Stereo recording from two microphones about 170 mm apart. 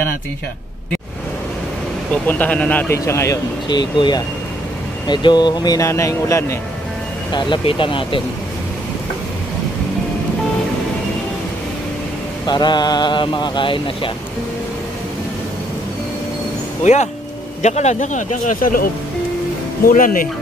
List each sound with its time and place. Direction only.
2.2 s speech: 10° left (ahead or behind)
7.3 s speech: 30° left (ahead or behind)
12.4 s speech: 25° left (ahead or behind)
16.8 s speech: 45° left (ahead or behind)
19.9 s speech: 55° left (ahead or behind)